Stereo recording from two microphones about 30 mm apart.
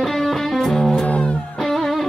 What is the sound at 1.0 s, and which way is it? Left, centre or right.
Music, left.